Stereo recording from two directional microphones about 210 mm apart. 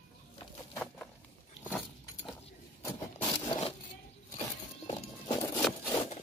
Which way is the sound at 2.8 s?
20° left (ahead or behind).